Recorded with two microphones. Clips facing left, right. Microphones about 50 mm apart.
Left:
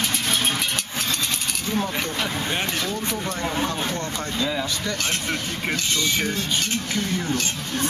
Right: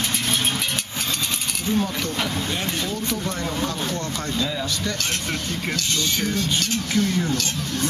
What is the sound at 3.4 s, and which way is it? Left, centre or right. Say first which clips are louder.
Speech: left 3 dB; left.